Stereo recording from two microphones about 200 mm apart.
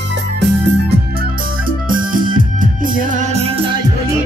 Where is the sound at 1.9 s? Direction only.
45° right (ahead or behind).